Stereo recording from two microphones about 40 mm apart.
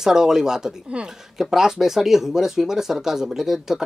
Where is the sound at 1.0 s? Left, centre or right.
Right.